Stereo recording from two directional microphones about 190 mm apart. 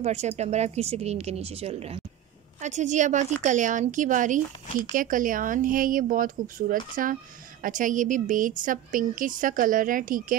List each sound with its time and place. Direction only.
0.0 s a woman's voice: 35° right (ahead or behind)